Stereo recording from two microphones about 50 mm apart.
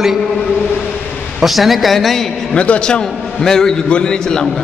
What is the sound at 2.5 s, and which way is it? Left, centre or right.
A man's voice, left.